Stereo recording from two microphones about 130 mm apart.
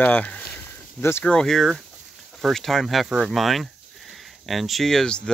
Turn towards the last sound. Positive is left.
turn(degrees=5)  # may be behind; listen again after turning